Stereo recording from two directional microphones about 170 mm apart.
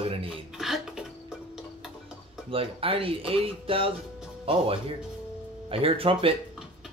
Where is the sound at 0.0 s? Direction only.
35° right (ahead or behind).